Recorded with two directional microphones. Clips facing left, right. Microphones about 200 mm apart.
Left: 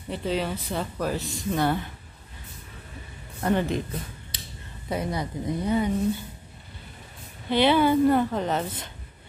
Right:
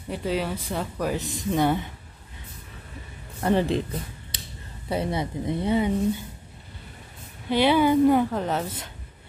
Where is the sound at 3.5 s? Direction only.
30° right (ahead or behind).